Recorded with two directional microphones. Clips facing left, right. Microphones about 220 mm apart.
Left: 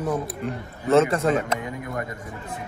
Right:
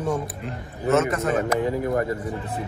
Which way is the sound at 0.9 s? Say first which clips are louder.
Left 2 dB; 30° left (ahead or behind).